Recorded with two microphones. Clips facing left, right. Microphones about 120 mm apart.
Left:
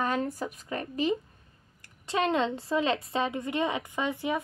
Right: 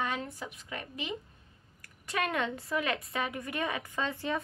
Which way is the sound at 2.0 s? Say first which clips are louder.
Left 5 dB; 25° left (ahead or behind).